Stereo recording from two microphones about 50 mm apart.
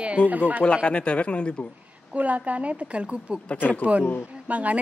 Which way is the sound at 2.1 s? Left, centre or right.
Right.